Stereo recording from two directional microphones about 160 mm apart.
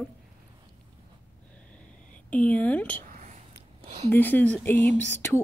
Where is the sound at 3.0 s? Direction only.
55° right (ahead or behind).